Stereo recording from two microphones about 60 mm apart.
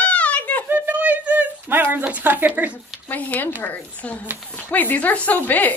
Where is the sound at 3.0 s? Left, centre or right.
Left.